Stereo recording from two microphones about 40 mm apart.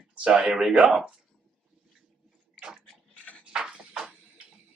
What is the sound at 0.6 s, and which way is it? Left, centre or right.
Speech, centre.